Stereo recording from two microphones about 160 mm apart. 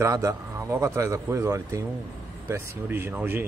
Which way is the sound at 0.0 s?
20° right (ahead or behind).